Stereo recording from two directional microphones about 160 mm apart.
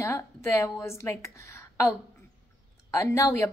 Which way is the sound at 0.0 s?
15° left (ahead or behind).